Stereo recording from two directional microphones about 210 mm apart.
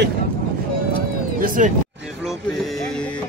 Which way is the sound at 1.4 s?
40° right (ahead or behind).